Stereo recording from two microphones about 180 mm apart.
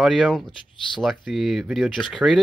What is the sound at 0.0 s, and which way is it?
Speech, centre (ahead or behind).